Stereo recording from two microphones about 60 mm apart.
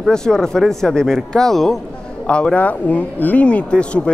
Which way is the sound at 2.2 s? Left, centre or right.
Centre.